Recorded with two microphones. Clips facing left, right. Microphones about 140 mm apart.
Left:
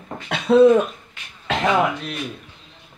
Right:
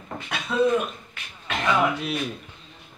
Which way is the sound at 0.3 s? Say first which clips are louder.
Left 10 dB; 70° left (ahead or behind).